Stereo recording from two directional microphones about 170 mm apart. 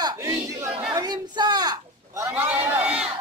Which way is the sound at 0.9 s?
25° right (ahead or behind).